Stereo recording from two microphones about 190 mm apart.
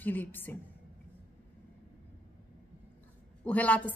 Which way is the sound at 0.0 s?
10° left (ahead or behind).